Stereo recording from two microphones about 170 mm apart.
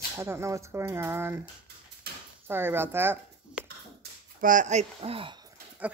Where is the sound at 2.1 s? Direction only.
70° right (ahead or behind).